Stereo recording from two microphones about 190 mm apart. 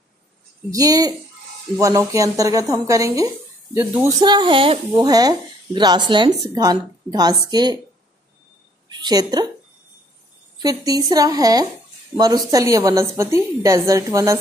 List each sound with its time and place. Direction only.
0.7 s a woman's voice: 20° right (ahead or behind)
4.2 s a woman's voice: 25° right (ahead or behind)
8.8 s a woman's voice: 20° right (ahead or behind)
10.6 s a woman's voice: 20° right (ahead or behind)